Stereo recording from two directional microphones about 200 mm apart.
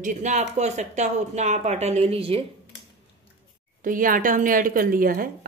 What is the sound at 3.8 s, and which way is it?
Speech, 45° right (ahead or behind).